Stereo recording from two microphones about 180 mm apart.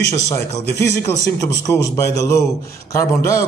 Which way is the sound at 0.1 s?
15° left (ahead or behind).